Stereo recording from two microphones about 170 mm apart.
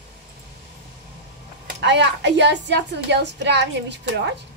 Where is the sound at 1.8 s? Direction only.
90° right.